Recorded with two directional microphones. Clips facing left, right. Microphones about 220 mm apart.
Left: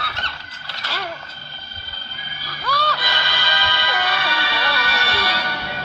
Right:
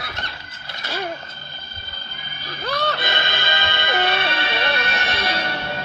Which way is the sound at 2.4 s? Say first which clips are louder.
Right 1 dB; 20° right (ahead or behind).